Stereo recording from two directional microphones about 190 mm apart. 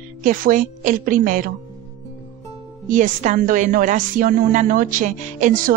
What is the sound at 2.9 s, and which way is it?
A woman's voice, 45° right (ahead or behind).